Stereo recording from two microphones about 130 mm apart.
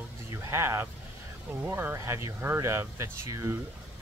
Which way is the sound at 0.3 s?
20° right (ahead or behind).